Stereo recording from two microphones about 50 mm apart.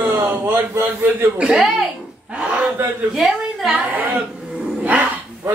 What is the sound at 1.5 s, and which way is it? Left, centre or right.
Speech, centre.